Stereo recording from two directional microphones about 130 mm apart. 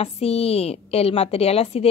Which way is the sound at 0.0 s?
50° left (ahead or behind).